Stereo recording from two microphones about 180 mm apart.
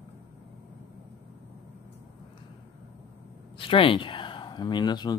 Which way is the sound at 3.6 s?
30° left (ahead or behind).